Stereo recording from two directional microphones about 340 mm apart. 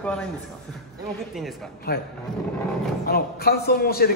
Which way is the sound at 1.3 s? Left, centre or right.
Centre.